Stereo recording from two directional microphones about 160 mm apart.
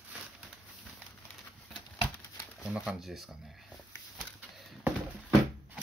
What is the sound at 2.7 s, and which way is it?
Speech, 5° right (ahead or behind).